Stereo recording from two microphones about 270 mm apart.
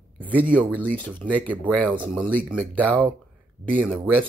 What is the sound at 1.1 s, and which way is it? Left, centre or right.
Speech, centre.